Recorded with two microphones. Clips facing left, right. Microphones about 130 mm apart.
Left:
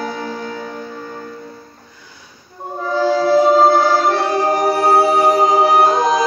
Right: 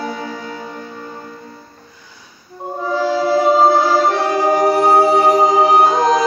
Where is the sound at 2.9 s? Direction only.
5° right (ahead or behind).